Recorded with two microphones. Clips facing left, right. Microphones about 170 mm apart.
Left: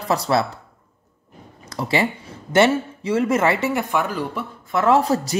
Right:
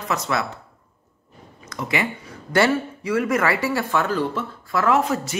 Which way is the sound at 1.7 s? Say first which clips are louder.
Left 4 dB; 30° left (ahead or behind).